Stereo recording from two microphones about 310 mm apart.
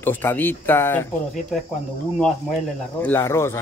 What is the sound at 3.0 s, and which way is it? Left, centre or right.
Speech, centre.